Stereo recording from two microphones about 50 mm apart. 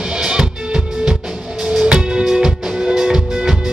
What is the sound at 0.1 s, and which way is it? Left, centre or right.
Music, centre.